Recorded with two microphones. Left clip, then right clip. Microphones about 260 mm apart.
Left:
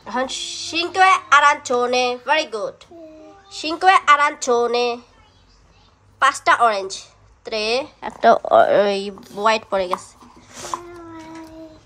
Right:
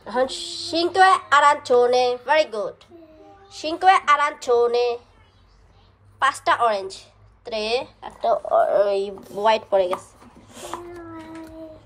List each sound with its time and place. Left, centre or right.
0.0 s a woman's voice: centre
6.1 s a woman's voice: centre
8.2 s speech: left
8.9 s a woman's voice: left
10.5 s babbling: left